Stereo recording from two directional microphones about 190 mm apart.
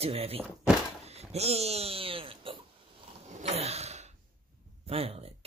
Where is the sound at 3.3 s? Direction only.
35° right (ahead or behind).